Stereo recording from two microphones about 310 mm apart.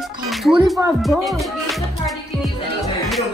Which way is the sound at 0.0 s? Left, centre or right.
Centre.